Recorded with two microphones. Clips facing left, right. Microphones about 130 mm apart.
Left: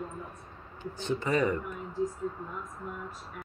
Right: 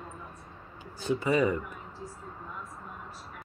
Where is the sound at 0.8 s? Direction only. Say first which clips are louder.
Right 2 dB; 10° right (ahead or behind).